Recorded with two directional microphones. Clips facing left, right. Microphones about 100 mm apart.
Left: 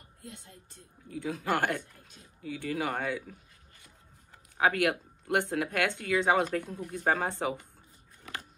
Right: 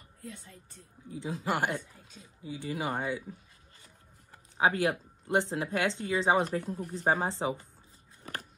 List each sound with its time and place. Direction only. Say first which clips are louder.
1.1 s speech: left 2 dB; 20° right (ahead or behind)
4.6 s speech: even; 25° right (ahead or behind)